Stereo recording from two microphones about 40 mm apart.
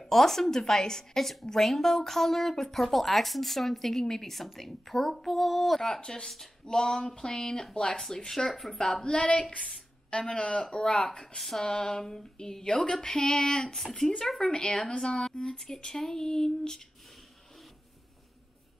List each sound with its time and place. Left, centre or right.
0.0 s a woman's voice: centre
5.9 s a woman's voice: centre
8.0 s a woman's voice: centre
9.0 s speech: left
11.1 s a woman's voice: centre